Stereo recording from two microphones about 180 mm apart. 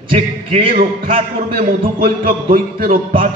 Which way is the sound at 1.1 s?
35° right (ahead or behind).